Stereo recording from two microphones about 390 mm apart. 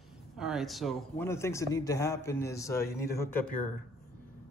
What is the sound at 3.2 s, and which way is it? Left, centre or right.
Speech, centre.